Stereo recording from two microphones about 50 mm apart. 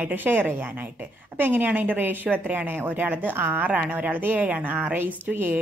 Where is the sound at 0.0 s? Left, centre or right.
Right.